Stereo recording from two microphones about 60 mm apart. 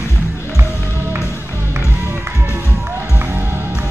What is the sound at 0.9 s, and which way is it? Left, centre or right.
Music, right.